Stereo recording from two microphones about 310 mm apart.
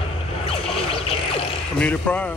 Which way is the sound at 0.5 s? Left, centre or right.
Centre.